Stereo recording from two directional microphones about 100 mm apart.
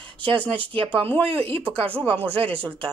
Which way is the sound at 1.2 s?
75° right (ahead or behind).